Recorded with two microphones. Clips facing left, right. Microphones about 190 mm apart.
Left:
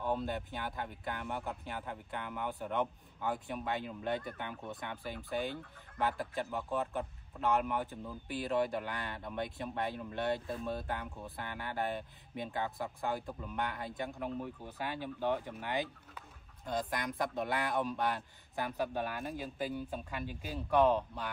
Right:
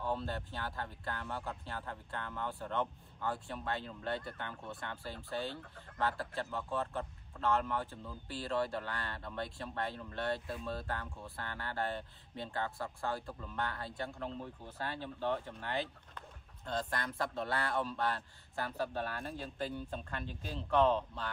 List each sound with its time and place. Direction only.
0.0 s speech: 15° left (ahead or behind)